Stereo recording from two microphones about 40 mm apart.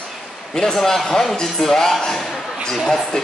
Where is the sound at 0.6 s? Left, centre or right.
Centre.